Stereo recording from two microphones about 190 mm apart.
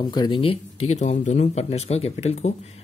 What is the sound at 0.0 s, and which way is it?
Speech, 25° left (ahead or behind).